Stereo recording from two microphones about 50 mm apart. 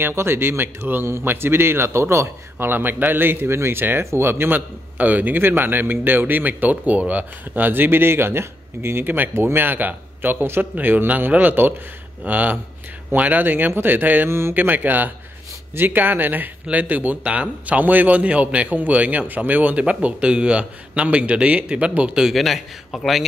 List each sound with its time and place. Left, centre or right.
0.0 s a man's voice: right
2.7 s speech: right
4.9 s a man's voice: right
17.2 s a man's voice: right
22.3 s a man's voice: centre